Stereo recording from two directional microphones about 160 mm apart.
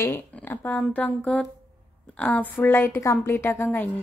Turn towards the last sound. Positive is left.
turn(degrees=15)  # may be behind; listen again after turning